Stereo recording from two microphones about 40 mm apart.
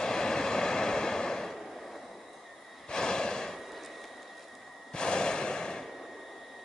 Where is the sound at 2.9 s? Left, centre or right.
Centre.